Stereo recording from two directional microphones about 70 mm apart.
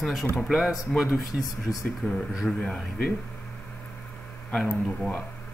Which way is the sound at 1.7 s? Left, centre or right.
Left.